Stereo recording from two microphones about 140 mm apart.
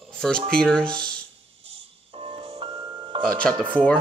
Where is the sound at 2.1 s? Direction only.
40° right (ahead or behind).